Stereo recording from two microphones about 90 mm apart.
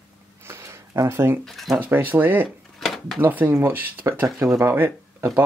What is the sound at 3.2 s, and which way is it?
Speech, 20° right (ahead or behind).